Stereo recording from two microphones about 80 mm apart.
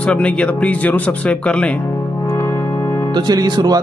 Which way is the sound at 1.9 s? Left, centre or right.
Left.